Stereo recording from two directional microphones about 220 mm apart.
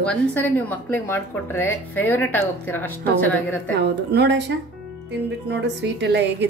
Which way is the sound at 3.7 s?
50° right (ahead or behind).